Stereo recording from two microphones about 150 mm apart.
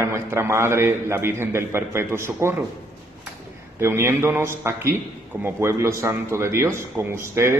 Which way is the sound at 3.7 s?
15° right (ahead or behind).